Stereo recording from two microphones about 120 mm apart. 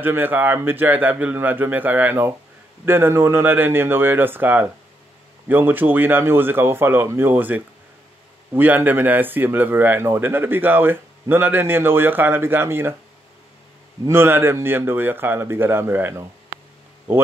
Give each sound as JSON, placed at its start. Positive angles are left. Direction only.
{"t": 0.0, "sound": "a man's voice", "side_deg": -15}
{"t": 14.0, "sound": "a man's voice", "side_deg": -20}